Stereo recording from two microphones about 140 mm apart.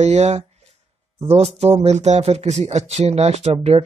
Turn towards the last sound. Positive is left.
turn(degrees=-45)  # may be behind; listen again after turning